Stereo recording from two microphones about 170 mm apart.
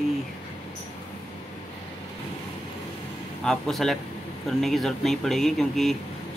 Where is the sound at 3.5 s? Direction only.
Centre (ahead or behind).